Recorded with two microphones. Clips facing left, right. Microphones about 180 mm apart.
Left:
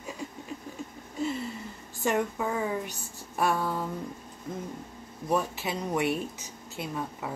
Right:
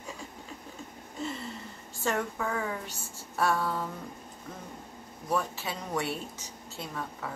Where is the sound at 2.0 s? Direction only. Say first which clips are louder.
Left 3 dB; 15° left (ahead or behind).